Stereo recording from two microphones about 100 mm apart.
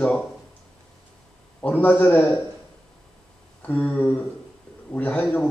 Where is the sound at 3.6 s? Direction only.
15° left (ahead or behind).